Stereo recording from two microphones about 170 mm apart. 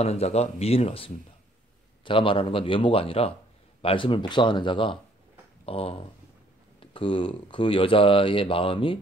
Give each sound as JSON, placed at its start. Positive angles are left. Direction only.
{"t": 0.0, "sound": "speech", "side_deg": 40}